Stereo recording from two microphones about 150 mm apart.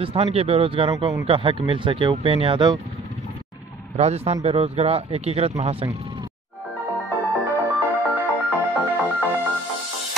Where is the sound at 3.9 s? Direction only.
45° right (ahead or behind).